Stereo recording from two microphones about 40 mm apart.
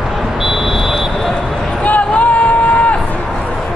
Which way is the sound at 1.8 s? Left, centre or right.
Left.